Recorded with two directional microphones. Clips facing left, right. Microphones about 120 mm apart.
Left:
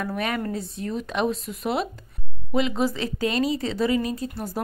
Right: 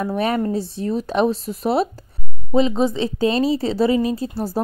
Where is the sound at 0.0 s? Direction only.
30° right (ahead or behind).